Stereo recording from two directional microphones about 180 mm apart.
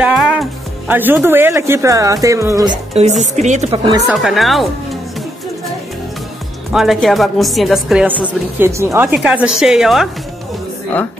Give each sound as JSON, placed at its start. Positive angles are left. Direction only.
{"t": 0.0, "sound": "music", "side_deg": -5}
{"t": 1.2, "sound": "speech", "side_deg": -10}
{"t": 4.1, "sound": "a woman's voice", "side_deg": 0}
{"t": 6.7, "sound": "a woman's voice", "side_deg": 0}